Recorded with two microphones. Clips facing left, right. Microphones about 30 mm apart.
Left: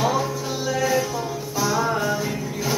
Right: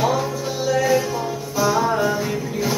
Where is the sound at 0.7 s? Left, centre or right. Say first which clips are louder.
Right 3 dB; centre.